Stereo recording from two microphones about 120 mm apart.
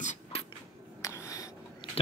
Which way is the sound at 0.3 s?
55° left (ahead or behind).